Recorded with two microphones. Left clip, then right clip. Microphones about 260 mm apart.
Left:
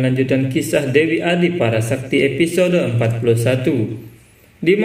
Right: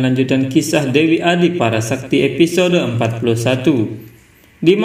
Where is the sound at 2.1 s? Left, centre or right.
Right.